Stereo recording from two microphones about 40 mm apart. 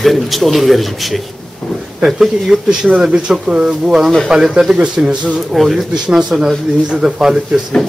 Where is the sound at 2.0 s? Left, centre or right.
Centre.